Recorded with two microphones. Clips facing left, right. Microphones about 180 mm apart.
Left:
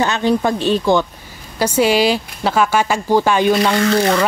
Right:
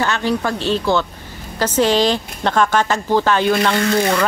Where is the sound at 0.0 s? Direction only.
20° left (ahead or behind).